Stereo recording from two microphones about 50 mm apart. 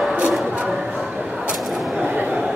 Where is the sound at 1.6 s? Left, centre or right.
Centre.